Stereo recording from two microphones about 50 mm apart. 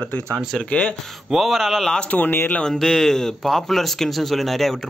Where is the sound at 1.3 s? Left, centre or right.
Centre.